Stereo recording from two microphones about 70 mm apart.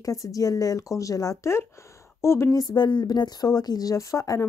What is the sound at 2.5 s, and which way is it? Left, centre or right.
Speech, left.